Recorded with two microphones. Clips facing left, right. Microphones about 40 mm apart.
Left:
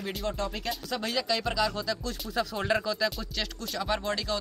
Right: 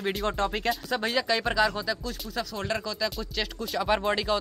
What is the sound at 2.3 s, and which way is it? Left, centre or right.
Speech, centre.